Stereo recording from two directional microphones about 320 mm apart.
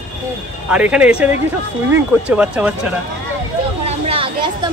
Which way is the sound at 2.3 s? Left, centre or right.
Centre.